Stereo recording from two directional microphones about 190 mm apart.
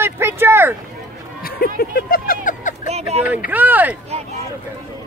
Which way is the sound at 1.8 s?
50° left (ahead or behind).